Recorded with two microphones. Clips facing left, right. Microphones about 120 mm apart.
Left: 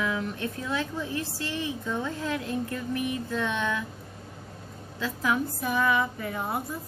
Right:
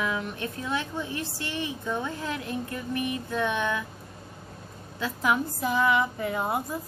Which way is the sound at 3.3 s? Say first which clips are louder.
Right 3 dB; 15° right (ahead or behind).